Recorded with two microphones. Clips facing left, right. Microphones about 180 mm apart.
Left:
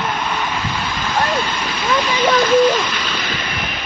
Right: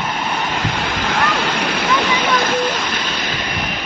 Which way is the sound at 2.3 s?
55° right (ahead or behind).